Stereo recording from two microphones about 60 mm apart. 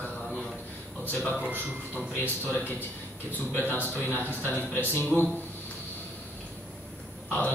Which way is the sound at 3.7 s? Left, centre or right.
Left.